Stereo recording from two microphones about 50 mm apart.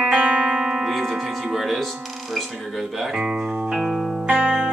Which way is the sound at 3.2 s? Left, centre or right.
Centre.